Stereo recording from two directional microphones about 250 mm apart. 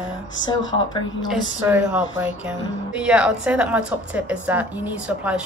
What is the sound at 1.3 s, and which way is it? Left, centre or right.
A woman's voice, centre.